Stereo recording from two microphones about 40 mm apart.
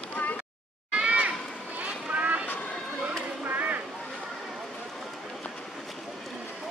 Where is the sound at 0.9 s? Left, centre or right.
Right.